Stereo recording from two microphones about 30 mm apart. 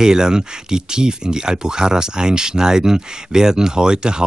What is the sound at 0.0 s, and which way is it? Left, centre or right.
Speech, right.